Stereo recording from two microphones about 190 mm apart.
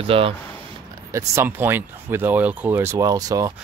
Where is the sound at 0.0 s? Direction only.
30° right (ahead or behind).